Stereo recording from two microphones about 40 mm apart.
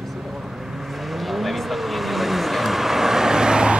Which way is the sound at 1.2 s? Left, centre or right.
Centre.